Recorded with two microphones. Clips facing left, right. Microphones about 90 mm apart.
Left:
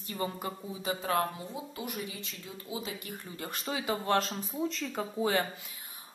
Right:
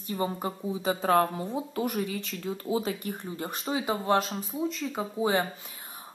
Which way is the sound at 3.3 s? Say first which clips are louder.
Right 3 dB; 20° right (ahead or behind).